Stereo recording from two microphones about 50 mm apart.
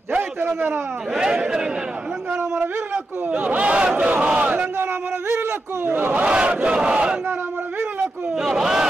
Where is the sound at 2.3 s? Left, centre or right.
Right.